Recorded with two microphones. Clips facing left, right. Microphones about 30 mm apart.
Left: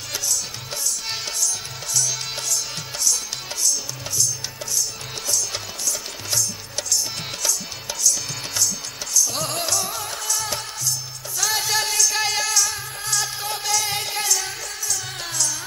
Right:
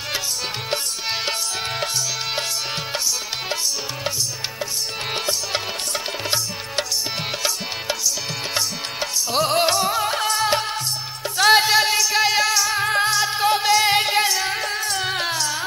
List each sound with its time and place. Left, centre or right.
4.7 s music: right
9.1 s music: right
11.7 s music: right
12.8 s music: right
13.4 s music: right